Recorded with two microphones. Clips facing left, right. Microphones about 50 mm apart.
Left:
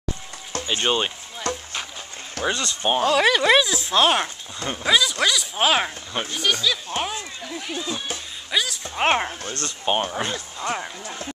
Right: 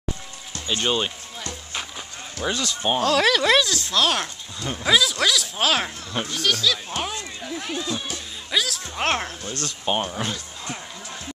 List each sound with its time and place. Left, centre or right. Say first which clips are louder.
0.7 s speech: left 1 dB; centre
1.5 s music: left 10 dB; left
2.4 s speech: left 2 dB; left
2.8 s speech: left 1 dB; centre
3.9 s speech: left 4 dB; left
4.8 s speech: even; centre
8.9 s speech: left 4 dB; centre
9.4 s speech: even; left
9.8 s speech: left 2 dB; centre
10.3 s speech: left 6 dB; left